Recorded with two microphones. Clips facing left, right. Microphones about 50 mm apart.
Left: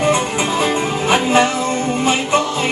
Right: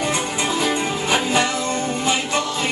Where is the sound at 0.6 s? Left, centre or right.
Left.